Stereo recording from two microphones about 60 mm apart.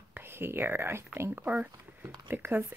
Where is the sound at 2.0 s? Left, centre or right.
Right.